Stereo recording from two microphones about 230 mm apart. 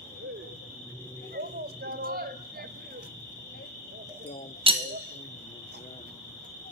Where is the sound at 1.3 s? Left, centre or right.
Right.